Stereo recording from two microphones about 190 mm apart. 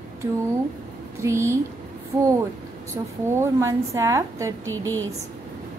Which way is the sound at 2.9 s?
15° right (ahead or behind).